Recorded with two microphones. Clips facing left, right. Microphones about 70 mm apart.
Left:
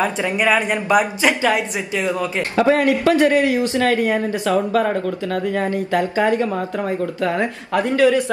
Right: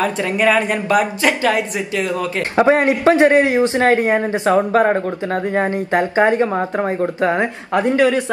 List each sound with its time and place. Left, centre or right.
0.0 s a woman's voice: centre
2.5 s a man's voice: right